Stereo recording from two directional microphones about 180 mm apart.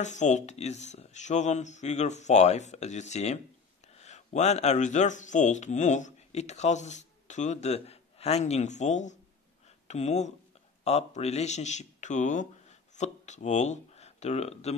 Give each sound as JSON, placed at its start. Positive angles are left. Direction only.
{"t": 0.0, "sound": "speech", "side_deg": 40}